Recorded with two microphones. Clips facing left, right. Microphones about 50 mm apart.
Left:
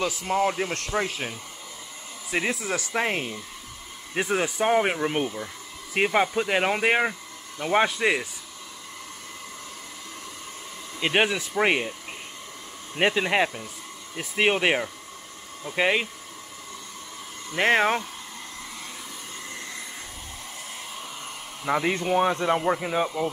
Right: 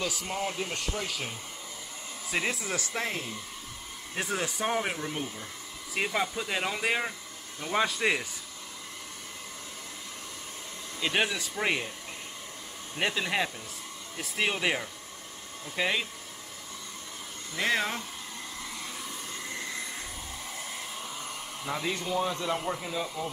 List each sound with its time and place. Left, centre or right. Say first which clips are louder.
0.3 s speech: left 8 dB; left
2.5 s speech: left 5 dB; centre
3.0 s speech: left 10 dB; left
4.1 s speech: left 7 dB; left
5.9 s speech: left 8 dB; left
8.0 s speech: left 4 dB; centre
11.0 s speech: left 6 dB; left
12.9 s speech: left 7 dB; left
17.6 s speech: left 8 dB; left
19.5 s vehicle: right 2 dB; centre
21.6 s speech: left 8 dB; left
22.1 s speech: left 8 dB; left